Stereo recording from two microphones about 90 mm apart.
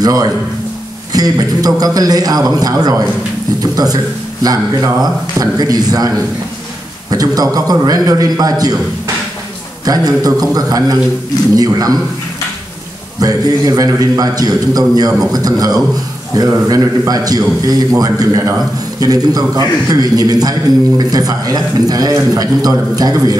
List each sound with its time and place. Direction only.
0.0 s a man's voice: 45° right (ahead or behind)
13.2 s a man's voice: 40° right (ahead or behind)